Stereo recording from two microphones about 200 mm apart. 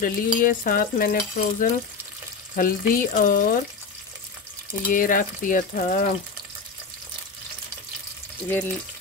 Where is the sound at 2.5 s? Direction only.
45° left (ahead or behind).